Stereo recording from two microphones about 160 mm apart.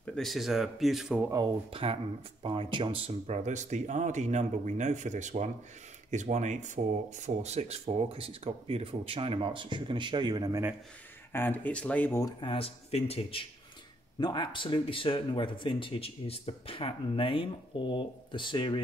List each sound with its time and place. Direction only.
0.0 s speech: 5° left (ahead or behind)
1.3 s speech: 30° right (ahead or behind)
11.3 s speech: 10° left (ahead or behind); by 13.4 s 40° left (ahead or behind)
14.2 s speech: 30° left (ahead or behind)